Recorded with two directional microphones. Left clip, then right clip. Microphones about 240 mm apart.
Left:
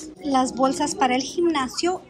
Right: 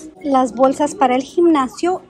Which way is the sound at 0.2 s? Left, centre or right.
Centre.